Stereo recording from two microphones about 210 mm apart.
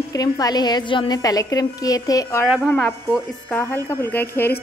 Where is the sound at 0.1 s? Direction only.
15° left (ahead or behind).